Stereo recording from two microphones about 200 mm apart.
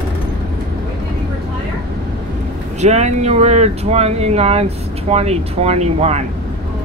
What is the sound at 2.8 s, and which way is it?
Speech, 35° right (ahead or behind).